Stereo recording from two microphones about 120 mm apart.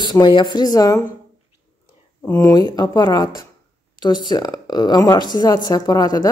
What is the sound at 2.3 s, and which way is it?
Speech, 30° left (ahead or behind).